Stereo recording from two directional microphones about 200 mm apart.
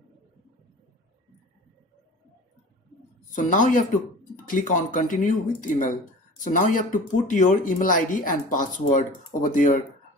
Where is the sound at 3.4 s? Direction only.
40° left (ahead or behind).